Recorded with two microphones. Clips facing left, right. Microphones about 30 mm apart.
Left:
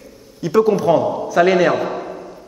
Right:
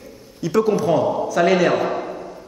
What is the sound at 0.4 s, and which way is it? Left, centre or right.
Speech, centre.